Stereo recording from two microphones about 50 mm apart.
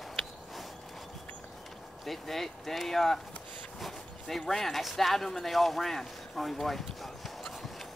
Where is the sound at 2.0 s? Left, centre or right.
Centre.